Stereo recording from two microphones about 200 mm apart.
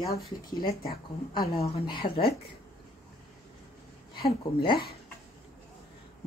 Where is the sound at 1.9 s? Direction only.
50° left (ahead or behind).